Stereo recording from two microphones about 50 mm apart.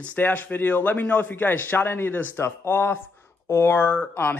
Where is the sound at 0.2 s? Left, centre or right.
Left.